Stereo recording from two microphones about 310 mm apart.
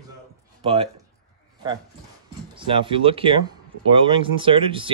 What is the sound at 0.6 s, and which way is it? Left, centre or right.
Speech, centre.